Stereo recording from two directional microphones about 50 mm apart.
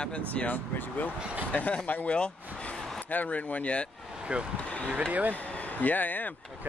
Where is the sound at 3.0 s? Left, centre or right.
Left.